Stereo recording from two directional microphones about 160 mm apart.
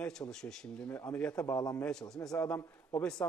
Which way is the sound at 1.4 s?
20° left (ahead or behind).